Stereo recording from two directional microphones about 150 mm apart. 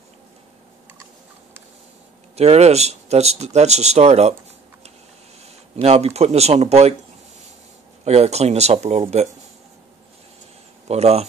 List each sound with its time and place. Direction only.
2.3 s speech: 45° right (ahead or behind)
5.8 s speech: 45° right (ahead or behind)
8.0 s speech: 45° right (ahead or behind)
10.9 s speech: 45° right (ahead or behind)